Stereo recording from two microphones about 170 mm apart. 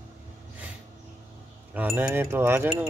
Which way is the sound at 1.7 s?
10° right (ahead or behind).